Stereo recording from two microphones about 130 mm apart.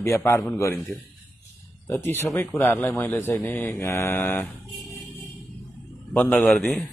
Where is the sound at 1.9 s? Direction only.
20° left (ahead or behind).